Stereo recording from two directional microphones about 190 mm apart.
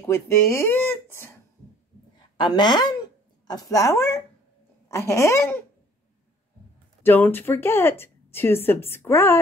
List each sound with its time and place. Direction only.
0.0 s speech: 15° left (ahead or behind)
2.3 s a woman's voice: 25° left (ahead or behind)
7.0 s a woman's voice: 10° left (ahead or behind)